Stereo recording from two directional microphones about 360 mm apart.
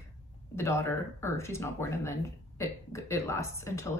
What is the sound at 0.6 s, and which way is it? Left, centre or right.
Speech, centre.